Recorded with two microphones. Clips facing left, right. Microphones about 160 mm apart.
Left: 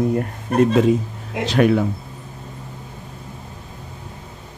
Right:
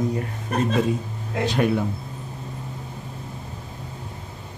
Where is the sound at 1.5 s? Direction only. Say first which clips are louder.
Left 6 dB; 90° left.